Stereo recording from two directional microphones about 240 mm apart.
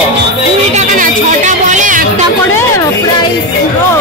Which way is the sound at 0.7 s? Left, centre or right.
Right.